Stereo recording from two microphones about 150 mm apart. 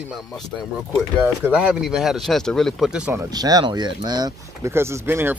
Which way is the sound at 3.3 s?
25° right (ahead or behind).